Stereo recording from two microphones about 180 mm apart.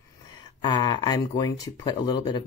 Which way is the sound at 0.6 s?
20° left (ahead or behind).